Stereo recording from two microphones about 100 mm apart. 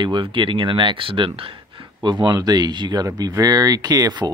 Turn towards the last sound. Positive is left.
turn(degrees=-45)  # may be behind; listen again after turning